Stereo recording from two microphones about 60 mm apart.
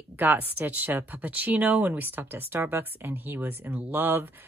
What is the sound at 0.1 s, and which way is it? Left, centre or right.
A woman's voice, right.